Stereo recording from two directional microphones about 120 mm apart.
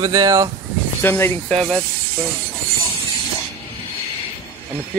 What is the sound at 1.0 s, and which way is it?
Speech, 20° left (ahead or behind).